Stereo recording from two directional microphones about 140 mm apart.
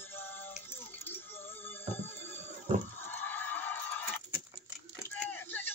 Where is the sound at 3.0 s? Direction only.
15° left (ahead or behind).